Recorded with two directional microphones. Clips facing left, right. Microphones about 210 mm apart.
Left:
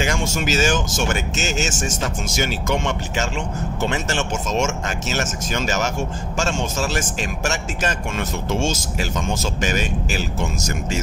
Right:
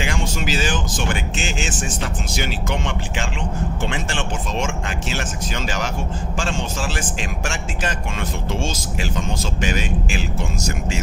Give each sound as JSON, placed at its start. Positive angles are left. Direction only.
{"t": 0.0, "sound": "speech", "side_deg": 45}